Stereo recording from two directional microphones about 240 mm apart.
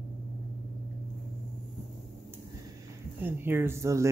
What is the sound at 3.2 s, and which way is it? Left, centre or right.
Speech, centre.